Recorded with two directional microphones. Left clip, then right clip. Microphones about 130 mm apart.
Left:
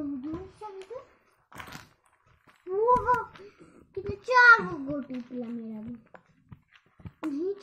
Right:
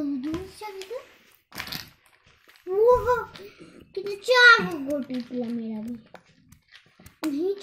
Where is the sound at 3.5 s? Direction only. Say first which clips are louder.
Right 6 dB; 30° right (ahead or behind).